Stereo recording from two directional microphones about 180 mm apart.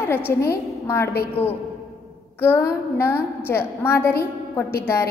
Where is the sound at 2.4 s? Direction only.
15° left (ahead or behind).